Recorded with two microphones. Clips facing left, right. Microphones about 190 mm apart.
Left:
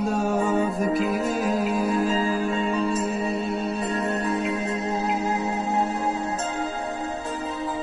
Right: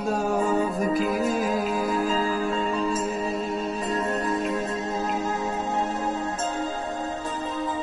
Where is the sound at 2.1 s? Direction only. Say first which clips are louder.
Left 1 dB; 40° left (ahead or behind).